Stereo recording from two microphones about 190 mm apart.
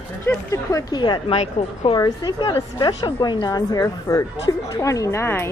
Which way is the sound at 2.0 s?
20° left (ahead or behind).